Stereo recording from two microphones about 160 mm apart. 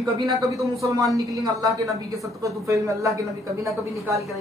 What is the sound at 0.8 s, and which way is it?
Speech, 20° right (ahead or behind).